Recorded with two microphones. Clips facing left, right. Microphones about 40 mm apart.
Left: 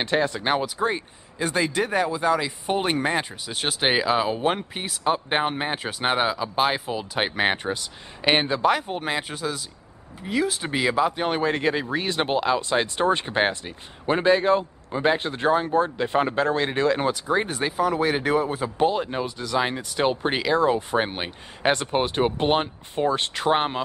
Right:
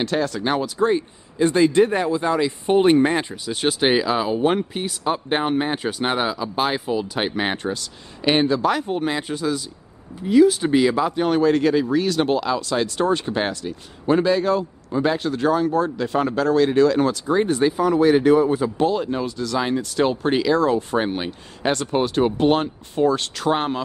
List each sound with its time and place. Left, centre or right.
0.0 s speech: left
8.8 s speech: centre
11.1 s speech: left; by 18.9 s centre
18.9 s speech: centre